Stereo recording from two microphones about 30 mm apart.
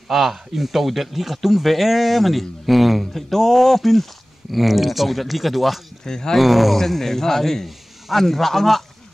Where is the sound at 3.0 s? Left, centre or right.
Centre.